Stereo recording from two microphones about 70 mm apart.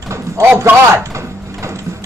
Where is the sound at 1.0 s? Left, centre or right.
Right.